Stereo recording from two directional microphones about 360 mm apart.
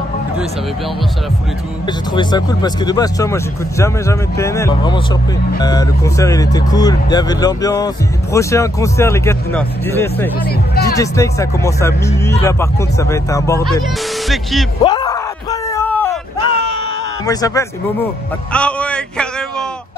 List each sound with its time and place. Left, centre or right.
1.9 s speech: centre
10.4 s speech: left
11.0 s speech: centre
14.8 s a sound: centre
17.3 s speech: centre
18.5 s a sound: centre